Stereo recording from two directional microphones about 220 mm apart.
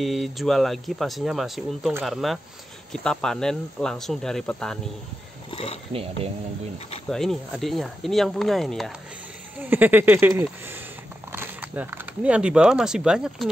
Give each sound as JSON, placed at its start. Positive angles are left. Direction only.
{"t": 0.0, "sound": "speech", "side_deg": 0}
{"t": 5.5, "sound": "speech", "side_deg": 25}
{"t": 7.1, "sound": "speech", "side_deg": 0}